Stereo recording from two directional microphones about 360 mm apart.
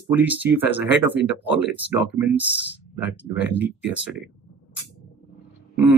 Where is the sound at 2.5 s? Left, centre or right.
Left.